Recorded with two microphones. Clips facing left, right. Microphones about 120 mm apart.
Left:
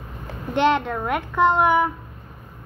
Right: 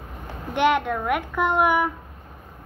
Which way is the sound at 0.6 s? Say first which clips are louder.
Left 1 dB; 10° right (ahead or behind).